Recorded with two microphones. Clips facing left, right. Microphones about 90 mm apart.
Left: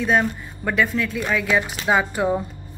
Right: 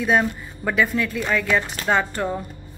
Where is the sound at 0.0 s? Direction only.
Centre (ahead or behind).